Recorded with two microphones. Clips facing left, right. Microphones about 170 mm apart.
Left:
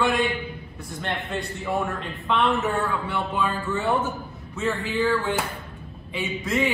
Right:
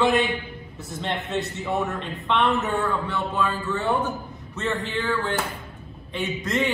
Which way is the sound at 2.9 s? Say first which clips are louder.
Right 1 dB; 10° left (ahead or behind).